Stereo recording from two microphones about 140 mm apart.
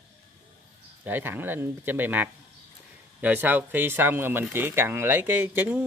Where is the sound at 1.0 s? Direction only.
15° right (ahead or behind).